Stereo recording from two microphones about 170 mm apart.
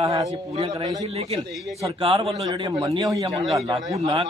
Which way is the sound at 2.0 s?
35° right (ahead or behind).